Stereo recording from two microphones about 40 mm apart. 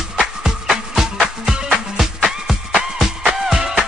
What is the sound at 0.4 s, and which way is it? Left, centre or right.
Music, centre.